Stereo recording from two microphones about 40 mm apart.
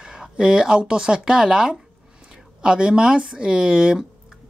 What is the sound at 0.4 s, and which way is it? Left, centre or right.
Speech, centre.